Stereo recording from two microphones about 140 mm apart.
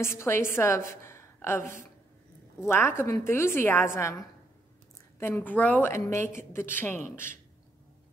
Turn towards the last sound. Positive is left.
turn(degrees=15)  # may be behind; listen again after turning